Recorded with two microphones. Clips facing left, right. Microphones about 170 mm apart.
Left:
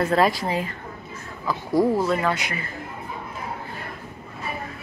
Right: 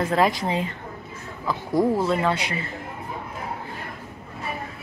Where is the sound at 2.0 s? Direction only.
30° right (ahead or behind).